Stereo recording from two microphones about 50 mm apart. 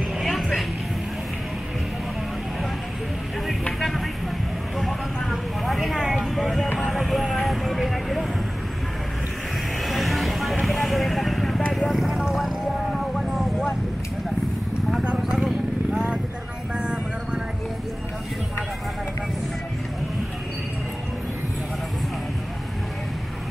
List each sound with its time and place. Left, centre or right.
0.2 s music: centre
4.7 s vehicle: centre
9.8 s vehicle: centre
12.2 s a sound: centre
13.1 s vehicle: centre
15.1 s vehicle: centre